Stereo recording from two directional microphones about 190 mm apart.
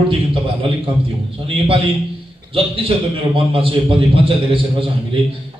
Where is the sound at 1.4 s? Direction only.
30° right (ahead or behind).